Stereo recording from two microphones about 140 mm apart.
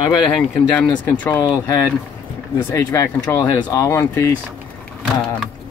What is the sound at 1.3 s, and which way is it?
Speech, 20° left (ahead or behind).